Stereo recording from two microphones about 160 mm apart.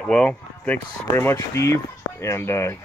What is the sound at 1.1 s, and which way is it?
Speech, 20° left (ahead or behind).